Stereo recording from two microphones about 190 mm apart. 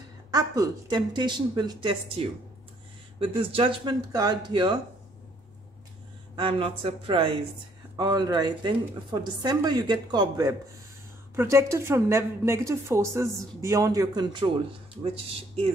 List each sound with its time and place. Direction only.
0.3 s a woman's voice: 20° right (ahead or behind)
6.3 s a woman's voice: 30° right (ahead or behind)